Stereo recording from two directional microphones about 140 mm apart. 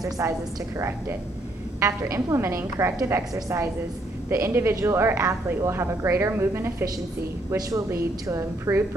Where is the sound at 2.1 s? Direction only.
20° right (ahead or behind).